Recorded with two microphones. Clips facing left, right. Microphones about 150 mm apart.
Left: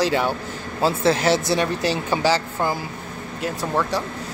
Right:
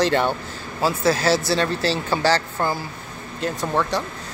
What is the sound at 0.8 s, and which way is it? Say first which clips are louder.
Speech: left 1 dB; 25° left (ahead or behind).